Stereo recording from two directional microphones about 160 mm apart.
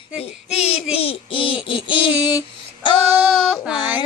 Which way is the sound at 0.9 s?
35° left (ahead or behind).